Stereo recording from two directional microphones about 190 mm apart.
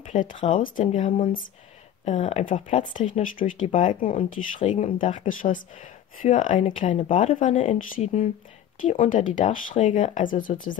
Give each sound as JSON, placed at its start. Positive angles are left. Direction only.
{"t": 0.1, "sound": "speech", "side_deg": 40}